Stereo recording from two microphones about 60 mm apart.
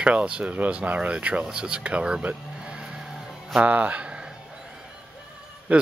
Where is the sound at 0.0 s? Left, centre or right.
Centre.